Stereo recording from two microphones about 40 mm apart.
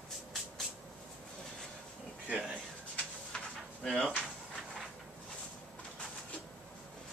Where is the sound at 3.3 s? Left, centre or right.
Left.